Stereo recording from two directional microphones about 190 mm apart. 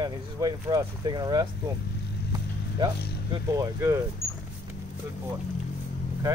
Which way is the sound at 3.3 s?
15° right (ahead or behind).